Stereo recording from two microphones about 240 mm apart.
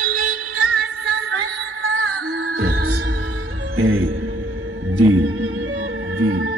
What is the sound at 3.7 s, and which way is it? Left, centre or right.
Music, right.